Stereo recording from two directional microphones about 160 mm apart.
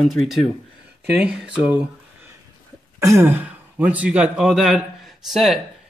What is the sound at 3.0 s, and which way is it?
Speech, 15° right (ahead or behind).